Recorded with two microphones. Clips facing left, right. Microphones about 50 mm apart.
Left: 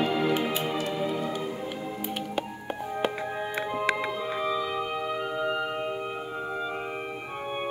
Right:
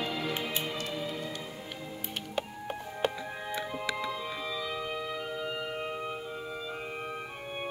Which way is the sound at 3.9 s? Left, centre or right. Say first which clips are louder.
Left 5 dB; left.